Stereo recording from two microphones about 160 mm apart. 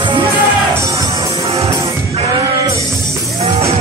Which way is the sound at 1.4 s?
40° right (ahead or behind).